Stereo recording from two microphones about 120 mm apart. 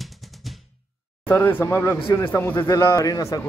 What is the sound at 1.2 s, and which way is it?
A man's voice, 20° left (ahead or behind).